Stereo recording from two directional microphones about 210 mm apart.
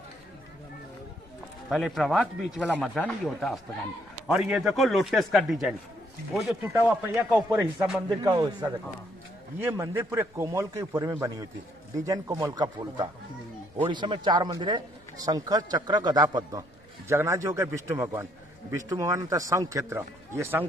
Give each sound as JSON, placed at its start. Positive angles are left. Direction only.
{"t": 1.7, "sound": "speech", "side_deg": 0}
{"t": 8.2, "sound": "a man's voice", "side_deg": -20}